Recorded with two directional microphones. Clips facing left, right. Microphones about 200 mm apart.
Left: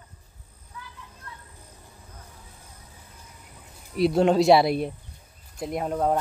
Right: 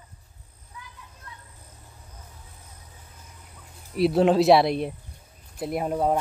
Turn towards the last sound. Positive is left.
turn(degrees=-5)  # may be behind; listen again after turning